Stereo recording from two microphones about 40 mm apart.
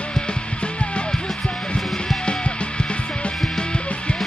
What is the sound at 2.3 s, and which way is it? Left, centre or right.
Music, left.